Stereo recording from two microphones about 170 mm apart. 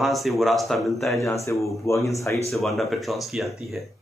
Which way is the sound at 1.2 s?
20° left (ahead or behind).